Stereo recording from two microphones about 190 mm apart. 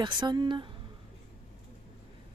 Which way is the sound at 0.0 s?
25° right (ahead or behind).